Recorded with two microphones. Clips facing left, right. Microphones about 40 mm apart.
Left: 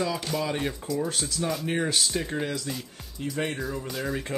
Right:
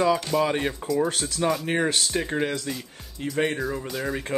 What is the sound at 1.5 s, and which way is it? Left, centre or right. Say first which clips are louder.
Speech: right 2 dB; centre.